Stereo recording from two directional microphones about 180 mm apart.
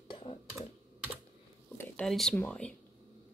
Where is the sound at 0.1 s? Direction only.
30° left (ahead or behind).